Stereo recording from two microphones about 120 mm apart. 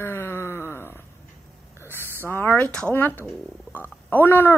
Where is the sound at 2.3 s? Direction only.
15° left (ahead or behind).